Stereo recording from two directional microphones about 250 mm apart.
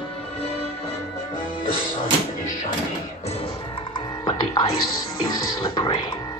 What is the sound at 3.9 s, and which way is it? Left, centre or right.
Music, centre.